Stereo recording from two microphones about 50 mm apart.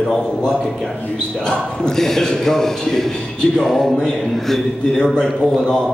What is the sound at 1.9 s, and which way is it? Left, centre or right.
A man's voice, centre.